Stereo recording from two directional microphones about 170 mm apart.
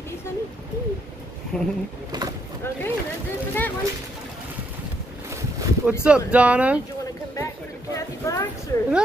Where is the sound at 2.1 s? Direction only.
25° right (ahead or behind).